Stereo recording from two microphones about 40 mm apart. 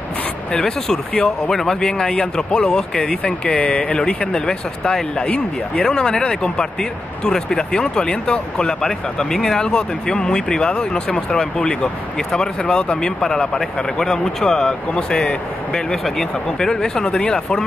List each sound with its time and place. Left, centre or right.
0.5 s speech: centre